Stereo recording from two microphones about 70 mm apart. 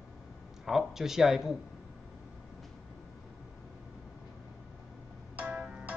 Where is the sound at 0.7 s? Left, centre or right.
Centre.